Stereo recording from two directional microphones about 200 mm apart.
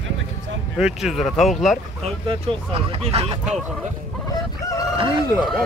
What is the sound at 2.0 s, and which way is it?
Speech, 25° right (ahead or behind).